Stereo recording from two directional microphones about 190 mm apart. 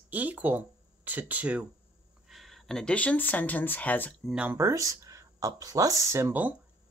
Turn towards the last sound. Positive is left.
turn(degrees=-10)  # may be behind; listen again after turning